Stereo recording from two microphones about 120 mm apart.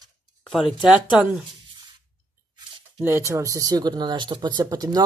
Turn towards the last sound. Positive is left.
turn(degrees=-35)  # may be behind; listen again after turning